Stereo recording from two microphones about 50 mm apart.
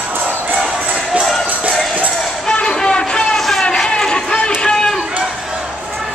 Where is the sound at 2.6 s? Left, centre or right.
Centre.